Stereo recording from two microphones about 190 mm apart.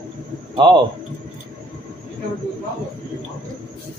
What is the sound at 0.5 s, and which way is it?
Speech, 25° right (ahead or behind).